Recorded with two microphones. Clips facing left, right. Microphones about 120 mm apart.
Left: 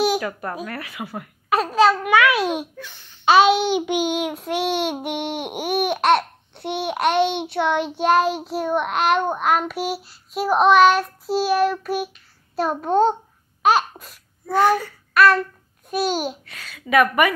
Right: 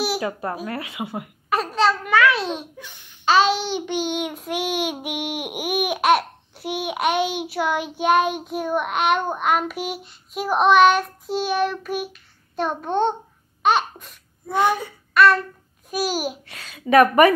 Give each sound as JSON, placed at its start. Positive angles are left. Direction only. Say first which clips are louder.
{"t": 0.2, "sound": "a woman's voice", "louder": "right 1 dB", "side_deg": -25}
{"t": 1.8, "sound": "a sound", "louder": "left 2 dB", "side_deg": 5}
{"t": 2.8, "sound": "babbling", "louder": "left 3 dB", "side_deg": -15}
{"t": 3.3, "sound": "babbling", "louder": "left 3 dB", "side_deg": 15}
{"t": 3.7, "sound": "child singing", "louder": "left 4 dB", "side_deg": 10}
{"t": 4.2, "sound": "child singing", "louder": "left 3 dB", "side_deg": 0}
{"t": 5.0, "sound": "babbling", "louder": "left 2 dB", "side_deg": -5}
{"t": 8.0, "sound": "child singing", "louder": "even", "side_deg": 0}
{"t": 8.3, "sound": "child singing", "louder": "left 2 dB", "side_deg": 30}
{"t": 8.5, "sound": "child singing", "louder": "left 1 dB", "side_deg": 0}
{"t": 13.6, "sound": "laughter", "louder": "left 2 dB", "side_deg": 5}
{"t": 14.5, "sound": "a child's voice", "louder": "left 3 dB", "side_deg": -20}
{"t": 15.1, "sound": "child singing", "louder": "even", "side_deg": 0}
{"t": 16.4, "sound": "a woman's voice", "louder": "right 5 dB", "side_deg": -25}